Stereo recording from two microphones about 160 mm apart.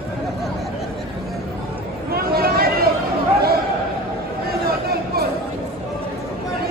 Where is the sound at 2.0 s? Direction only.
70° right (ahead or behind).